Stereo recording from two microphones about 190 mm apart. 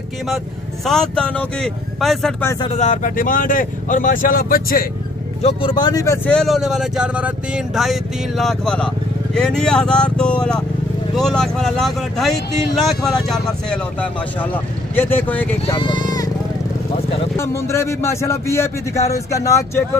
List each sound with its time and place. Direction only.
0.8 s speech: 5° left (ahead or behind)
2.6 s speech: 35° left (ahead or behind)
5.4 s speech: 25° left (ahead or behind)
6.2 s speech: 5° left (ahead or behind)
15.0 s a man's voice: 10° left (ahead or behind)
15.6 s speech: 25° left (ahead or behind)
17.4 s a man's voice: 15° left (ahead or behind)